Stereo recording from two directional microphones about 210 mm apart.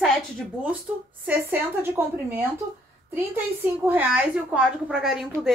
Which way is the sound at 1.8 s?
10° right (ahead or behind).